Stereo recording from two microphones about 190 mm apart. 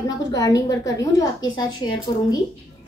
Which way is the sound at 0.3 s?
20° left (ahead or behind).